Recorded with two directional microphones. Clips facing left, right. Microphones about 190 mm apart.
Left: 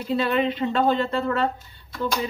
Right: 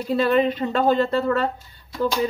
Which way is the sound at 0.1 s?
40° right (ahead or behind).